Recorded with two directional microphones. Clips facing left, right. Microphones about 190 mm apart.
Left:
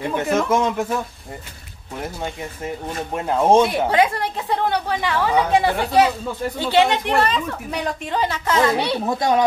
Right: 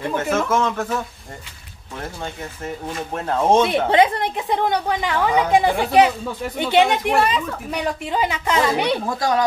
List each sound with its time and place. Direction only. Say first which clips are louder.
0.1 s speech: left 1 dB; 15° left (ahead or behind)
3.9 s speech: right 2 dB; 20° right (ahead or behind)
9.0 s speech: left 2 dB; 20° left (ahead or behind)